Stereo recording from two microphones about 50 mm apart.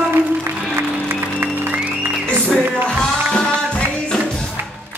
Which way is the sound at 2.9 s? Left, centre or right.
Centre.